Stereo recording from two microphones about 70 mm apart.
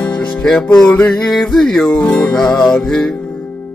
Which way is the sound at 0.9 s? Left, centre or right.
Left.